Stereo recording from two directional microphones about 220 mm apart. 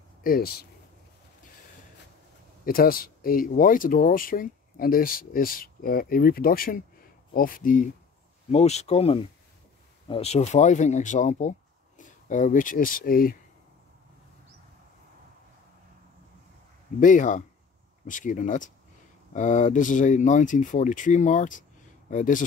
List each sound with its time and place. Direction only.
0.2 s speech: 40° left (ahead or behind)
2.6 s speech: 40° left (ahead or behind)
17.0 s speech: 35° left (ahead or behind)